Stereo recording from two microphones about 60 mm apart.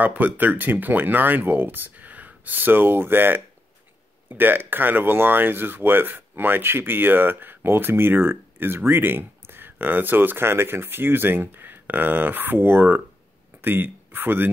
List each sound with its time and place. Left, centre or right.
0.0 s speech: right